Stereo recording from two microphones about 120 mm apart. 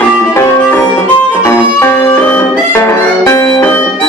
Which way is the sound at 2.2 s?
15° left (ahead or behind).